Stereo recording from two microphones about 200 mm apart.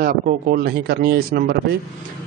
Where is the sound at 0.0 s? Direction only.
50° right (ahead or behind).